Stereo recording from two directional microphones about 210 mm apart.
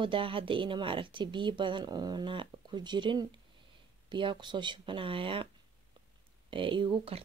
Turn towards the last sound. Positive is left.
turn(degrees=-25)  # may be behind; listen again after turning